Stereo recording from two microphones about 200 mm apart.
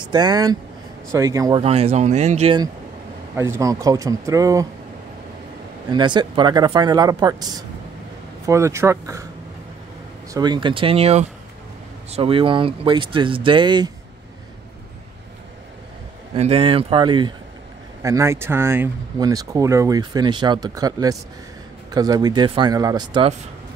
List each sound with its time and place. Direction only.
0.0 s speech: 20° right (ahead or behind)
1.6 s speech: 30° right (ahead or behind)
3.3 s speech: 15° right (ahead or behind)
5.9 s speech: 20° right (ahead or behind)
10.3 s speech: 20° right (ahead or behind)
16.3 s speech: 30° right (ahead or behind)